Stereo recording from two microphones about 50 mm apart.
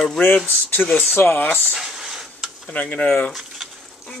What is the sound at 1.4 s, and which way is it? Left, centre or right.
Speech, left.